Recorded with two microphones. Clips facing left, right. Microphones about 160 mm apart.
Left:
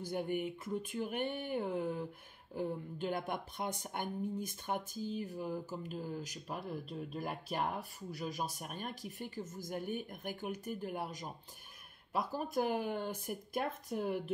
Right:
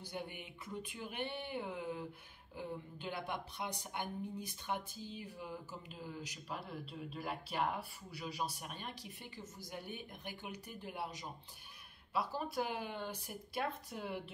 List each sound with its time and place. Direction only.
0.0 s speech: 45° left (ahead or behind)